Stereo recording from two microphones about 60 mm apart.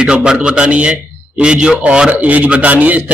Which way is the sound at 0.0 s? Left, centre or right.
Centre.